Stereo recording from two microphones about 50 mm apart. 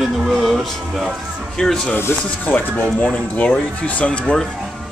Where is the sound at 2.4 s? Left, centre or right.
Left.